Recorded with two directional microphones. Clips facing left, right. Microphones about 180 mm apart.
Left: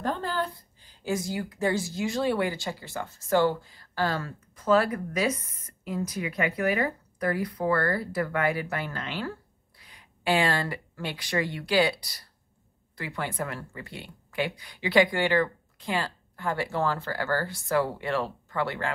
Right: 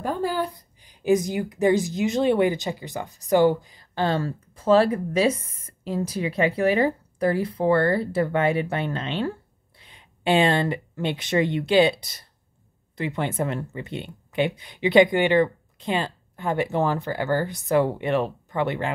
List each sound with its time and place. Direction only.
0.0 s a woman's voice: 10° right (ahead or behind)